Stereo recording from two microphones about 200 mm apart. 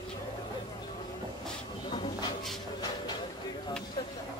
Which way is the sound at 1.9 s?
25° left (ahead or behind).